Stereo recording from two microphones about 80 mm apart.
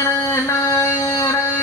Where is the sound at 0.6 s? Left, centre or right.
Left.